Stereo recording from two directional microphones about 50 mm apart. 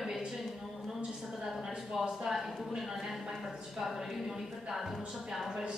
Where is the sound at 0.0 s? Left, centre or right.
Centre.